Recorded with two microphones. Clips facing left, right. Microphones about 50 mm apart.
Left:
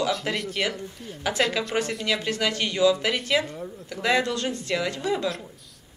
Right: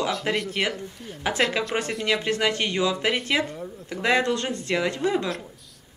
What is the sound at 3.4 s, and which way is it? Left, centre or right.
Speech, centre.